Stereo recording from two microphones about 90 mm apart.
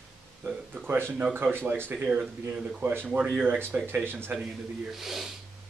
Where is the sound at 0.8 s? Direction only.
25° right (ahead or behind).